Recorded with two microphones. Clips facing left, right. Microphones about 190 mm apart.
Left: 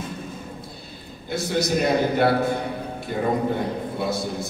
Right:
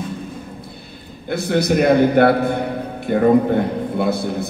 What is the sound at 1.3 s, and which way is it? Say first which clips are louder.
A man's voice: right 6 dB; 60° right (ahead or behind).